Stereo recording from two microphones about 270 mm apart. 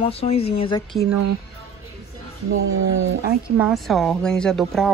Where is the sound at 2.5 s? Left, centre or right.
Right.